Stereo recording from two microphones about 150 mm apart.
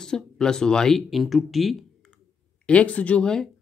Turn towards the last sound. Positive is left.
turn(degrees=5)  # may be behind; listen again after turning